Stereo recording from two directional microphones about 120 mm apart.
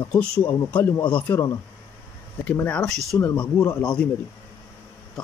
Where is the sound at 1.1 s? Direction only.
15° left (ahead or behind).